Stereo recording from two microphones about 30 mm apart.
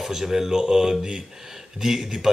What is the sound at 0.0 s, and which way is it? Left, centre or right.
Speech, centre.